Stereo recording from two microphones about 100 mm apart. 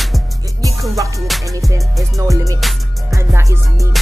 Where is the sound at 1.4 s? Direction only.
35° right (ahead or behind).